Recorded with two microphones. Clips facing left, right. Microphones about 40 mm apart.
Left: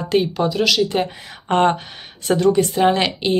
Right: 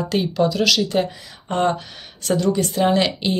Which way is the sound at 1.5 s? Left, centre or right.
Left.